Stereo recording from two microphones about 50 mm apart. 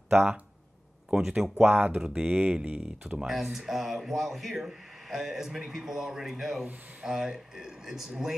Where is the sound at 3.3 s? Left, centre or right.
Centre.